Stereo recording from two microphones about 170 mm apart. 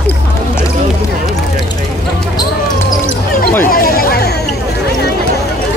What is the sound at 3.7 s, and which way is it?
Chatter, 60° left (ahead or behind).